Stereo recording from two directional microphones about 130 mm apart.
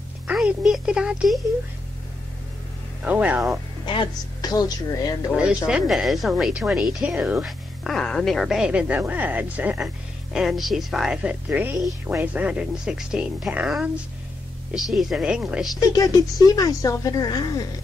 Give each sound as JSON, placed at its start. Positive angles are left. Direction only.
{"t": 0.3, "sound": "speech", "side_deg": -5}
{"t": 3.0, "sound": "speech", "side_deg": -10}
{"t": 3.8, "sound": "speech", "side_deg": 35}
{"t": 5.3, "sound": "speech", "side_deg": -5}
{"t": 10.3, "sound": "speech", "side_deg": 0}
{"t": 15.9, "sound": "speech", "side_deg": 30}